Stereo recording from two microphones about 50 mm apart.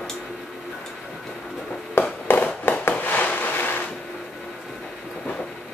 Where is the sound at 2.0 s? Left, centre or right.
Left.